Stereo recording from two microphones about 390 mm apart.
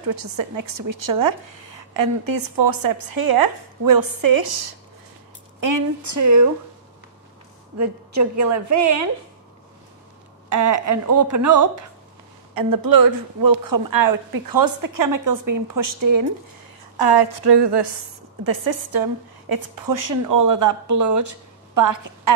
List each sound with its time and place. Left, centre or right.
0.0 s a woman's voice: right
5.6 s a woman's voice: right
7.7 s a woman's voice: right
10.5 s a woman's voice: right
12.5 s a woman's voice: right
16.9 s a woman's voice: right
18.4 s a woman's voice: right